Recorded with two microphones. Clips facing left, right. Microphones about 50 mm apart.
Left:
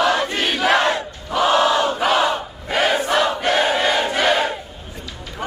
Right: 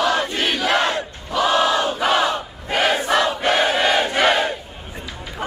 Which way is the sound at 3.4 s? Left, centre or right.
Right.